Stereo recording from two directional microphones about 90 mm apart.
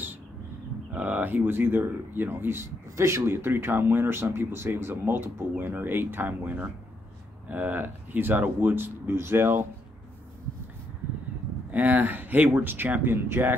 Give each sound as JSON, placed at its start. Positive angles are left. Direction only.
{"t": 0.9, "sound": "speech", "side_deg": -15}
{"t": 11.7, "sound": "speech", "side_deg": -20}